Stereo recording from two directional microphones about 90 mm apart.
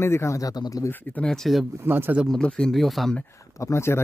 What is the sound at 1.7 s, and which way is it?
Speech, 25° right (ahead or behind).